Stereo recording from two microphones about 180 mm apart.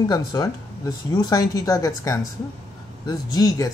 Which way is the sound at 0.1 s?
20° left (ahead or behind).